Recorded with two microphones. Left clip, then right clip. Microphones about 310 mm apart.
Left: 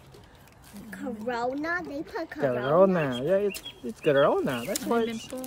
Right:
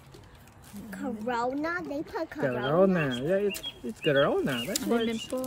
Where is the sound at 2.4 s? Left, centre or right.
Centre.